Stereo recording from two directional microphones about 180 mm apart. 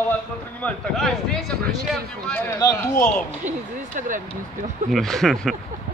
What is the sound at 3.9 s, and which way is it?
Speech, 45° right (ahead or behind).